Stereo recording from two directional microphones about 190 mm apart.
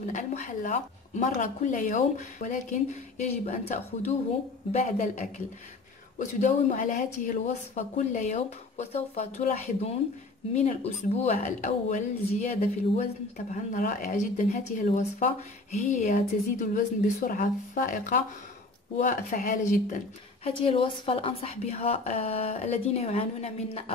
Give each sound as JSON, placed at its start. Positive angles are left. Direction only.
{"t": 0.1, "sound": "speech", "side_deg": 40}
{"t": 20.4, "sound": "speech", "side_deg": 30}